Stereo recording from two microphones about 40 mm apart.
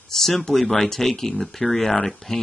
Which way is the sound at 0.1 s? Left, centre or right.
Centre.